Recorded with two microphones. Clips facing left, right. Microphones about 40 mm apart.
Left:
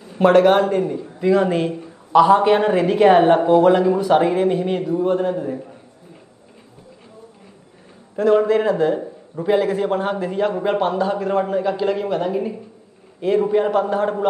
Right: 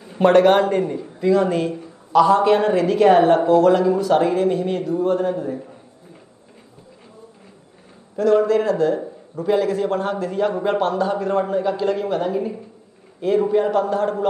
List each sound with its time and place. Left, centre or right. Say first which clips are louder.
0.2 s a man's voice: even; centre
1.2 s speech: left 1 dB; centre
8.2 s a man's voice: left 1 dB; left